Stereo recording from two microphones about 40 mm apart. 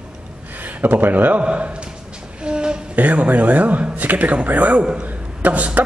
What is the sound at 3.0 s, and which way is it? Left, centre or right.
Speech, right.